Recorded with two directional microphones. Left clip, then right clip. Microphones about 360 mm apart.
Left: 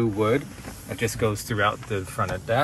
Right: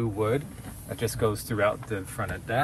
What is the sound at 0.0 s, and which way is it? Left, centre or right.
Speech, centre.